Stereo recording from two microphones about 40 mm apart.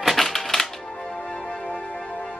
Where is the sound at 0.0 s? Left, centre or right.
Centre.